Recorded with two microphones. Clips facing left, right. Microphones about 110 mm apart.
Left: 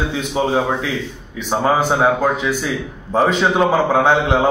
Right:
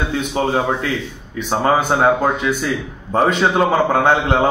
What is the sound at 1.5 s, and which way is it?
Speech, centre (ahead or behind).